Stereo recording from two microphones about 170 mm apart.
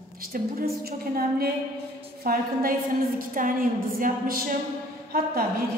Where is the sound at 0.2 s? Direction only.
60° right (ahead or behind).